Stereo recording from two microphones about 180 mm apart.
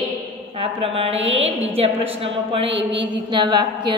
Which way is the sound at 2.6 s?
85° right.